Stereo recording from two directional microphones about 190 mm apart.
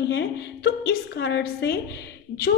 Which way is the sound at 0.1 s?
60° left (ahead or behind).